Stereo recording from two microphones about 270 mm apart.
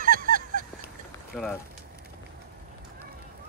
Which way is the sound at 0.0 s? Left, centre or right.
Right.